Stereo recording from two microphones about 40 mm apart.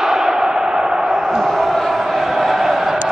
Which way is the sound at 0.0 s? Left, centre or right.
Centre.